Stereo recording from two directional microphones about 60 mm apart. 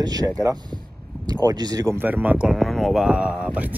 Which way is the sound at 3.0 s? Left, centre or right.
Centre.